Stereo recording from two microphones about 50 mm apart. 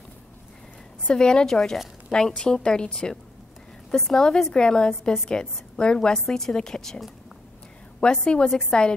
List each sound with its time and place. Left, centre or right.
1.0 s a woman's voice: centre
8.0 s a woman's voice: centre